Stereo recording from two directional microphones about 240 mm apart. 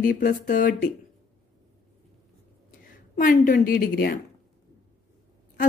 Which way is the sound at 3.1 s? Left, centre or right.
Left.